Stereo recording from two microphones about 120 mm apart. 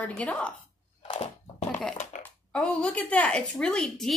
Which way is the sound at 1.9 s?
90° left.